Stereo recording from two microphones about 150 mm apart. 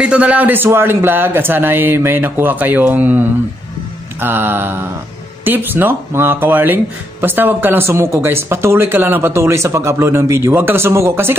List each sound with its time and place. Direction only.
0.0 s speech: 10° right (ahead or behind)